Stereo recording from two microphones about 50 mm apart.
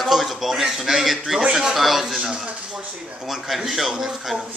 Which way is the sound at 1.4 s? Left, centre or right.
Centre.